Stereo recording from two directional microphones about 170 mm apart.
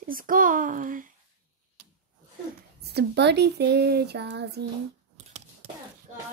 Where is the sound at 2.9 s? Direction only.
80° right.